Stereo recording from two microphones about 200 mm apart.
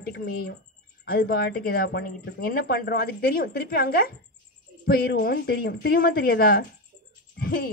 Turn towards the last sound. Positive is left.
turn(degrees=50)  # may be behind; listen again after turning